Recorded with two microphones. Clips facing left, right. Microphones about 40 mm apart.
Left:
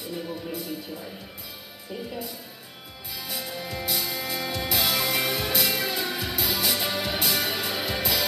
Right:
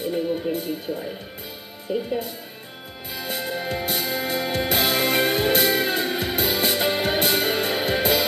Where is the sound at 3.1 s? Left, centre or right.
Right.